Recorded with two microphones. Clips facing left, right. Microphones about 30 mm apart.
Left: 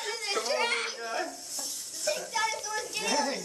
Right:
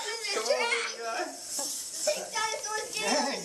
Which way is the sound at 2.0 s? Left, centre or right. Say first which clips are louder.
Left 1 dB; centre.